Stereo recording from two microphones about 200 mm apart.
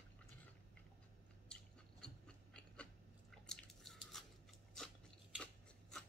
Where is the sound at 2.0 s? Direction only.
5° left (ahead or behind).